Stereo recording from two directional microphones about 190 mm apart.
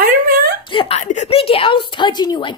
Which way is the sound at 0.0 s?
50° right (ahead or behind).